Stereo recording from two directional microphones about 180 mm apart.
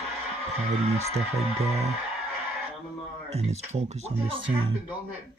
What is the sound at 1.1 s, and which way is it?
Speech, 35° right (ahead or behind).